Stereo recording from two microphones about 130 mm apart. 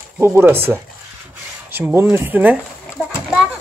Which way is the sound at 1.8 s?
15° right (ahead or behind).